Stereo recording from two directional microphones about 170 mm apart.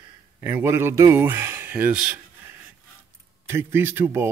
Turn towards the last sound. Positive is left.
turn(degrees=-15)  # may be behind; listen again after turning